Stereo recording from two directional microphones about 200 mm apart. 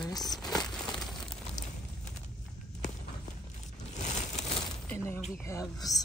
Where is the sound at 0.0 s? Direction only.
20° left (ahead or behind).